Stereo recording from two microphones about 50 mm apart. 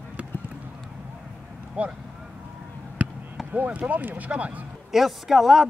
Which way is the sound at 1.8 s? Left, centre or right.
Right.